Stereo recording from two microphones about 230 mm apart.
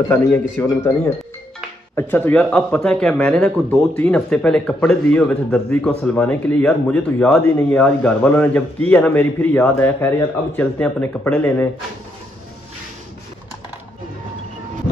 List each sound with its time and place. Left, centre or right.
0.1 s a man's voice: centre